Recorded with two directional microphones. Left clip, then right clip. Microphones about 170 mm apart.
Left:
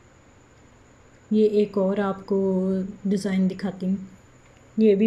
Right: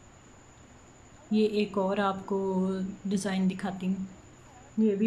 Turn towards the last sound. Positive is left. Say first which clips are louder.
# left 9 dB
turn(degrees=15)  # may be behind; listen again after turning